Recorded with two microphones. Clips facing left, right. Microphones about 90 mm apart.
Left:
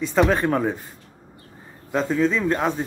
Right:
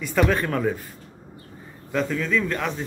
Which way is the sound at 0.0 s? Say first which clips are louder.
Left 3 dB; 20° left (ahead or behind).